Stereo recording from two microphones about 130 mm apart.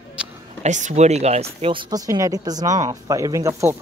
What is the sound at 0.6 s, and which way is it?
Speech, 65° right (ahead or behind).